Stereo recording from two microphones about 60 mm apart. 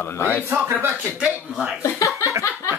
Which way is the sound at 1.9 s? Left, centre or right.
Left.